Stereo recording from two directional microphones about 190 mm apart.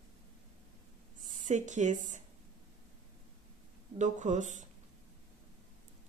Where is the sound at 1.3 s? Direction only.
40° right (ahead or behind).